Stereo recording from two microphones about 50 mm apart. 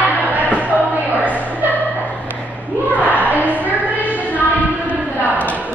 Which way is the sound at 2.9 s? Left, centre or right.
Right.